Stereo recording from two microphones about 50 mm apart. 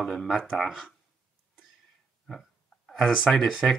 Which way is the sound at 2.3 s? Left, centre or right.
Centre.